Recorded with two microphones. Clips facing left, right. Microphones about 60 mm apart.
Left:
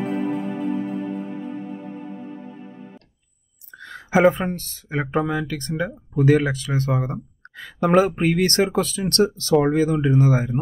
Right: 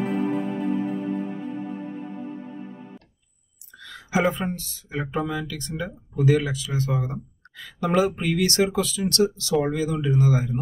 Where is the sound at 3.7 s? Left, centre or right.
Left.